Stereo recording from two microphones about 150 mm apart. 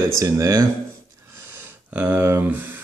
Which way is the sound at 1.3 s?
15° right (ahead or behind).